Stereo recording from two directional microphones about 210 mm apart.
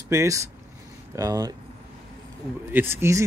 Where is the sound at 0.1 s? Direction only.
15° right (ahead or behind).